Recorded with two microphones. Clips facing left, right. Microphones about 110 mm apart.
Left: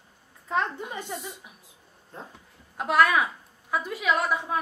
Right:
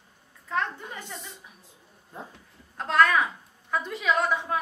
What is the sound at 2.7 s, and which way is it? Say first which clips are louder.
A woman's voice: even; 10° left (ahead or behind).